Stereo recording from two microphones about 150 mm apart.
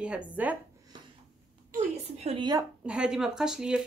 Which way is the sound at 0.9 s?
30° right (ahead or behind).